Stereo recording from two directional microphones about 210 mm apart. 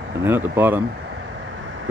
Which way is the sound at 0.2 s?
10° right (ahead or behind).